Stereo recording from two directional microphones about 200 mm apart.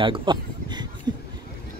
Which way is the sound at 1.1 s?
20° right (ahead or behind).